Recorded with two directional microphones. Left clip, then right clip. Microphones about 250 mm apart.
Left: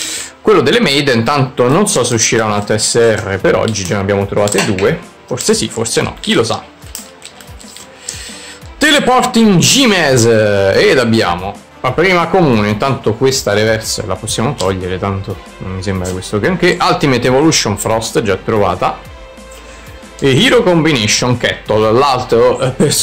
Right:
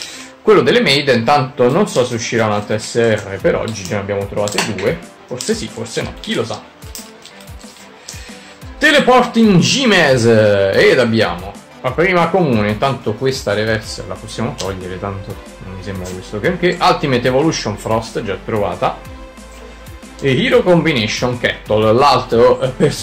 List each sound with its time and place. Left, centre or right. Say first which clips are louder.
0.5 s a man's voice: left 1 dB; left
8.7 s a man's voice: even; left
20.2 s a man's voice: left 3 dB; left